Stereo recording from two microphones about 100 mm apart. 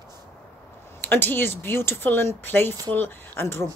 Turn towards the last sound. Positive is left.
turn(degrees=25)  # may be behind; listen again after turning